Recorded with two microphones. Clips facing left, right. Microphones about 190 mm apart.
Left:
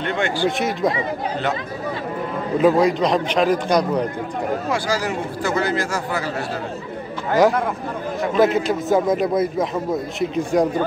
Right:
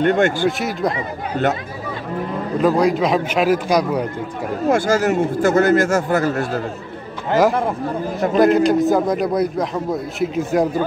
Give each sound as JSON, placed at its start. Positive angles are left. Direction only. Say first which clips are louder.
{"t": 0.0, "sound": "speech", "louder": "right 6 dB", "side_deg": -45}
{"t": 0.5, "sound": "a man's voice", "louder": "even", "side_deg": 0}
{"t": 2.5, "sound": "a man's voice", "louder": "even", "side_deg": 0}
{"t": 4.6, "sound": "speech", "louder": "right 6 dB", "side_deg": -50}
{"t": 8.4, "sound": "a man's voice", "louder": "right 5 dB", "side_deg": 0}